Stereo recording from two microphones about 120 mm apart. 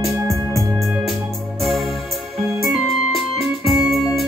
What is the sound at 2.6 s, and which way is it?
Music, centre (ahead or behind).